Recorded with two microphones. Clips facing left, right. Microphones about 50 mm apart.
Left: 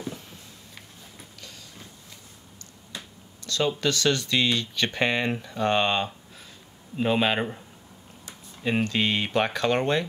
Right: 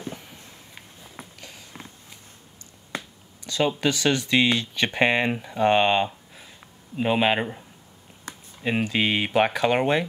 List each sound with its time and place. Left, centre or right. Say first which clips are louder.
0.1 s a sound: right 1 dB; right
3.4 s speech: right 2 dB; centre
8.6 s speech: right 1 dB; centre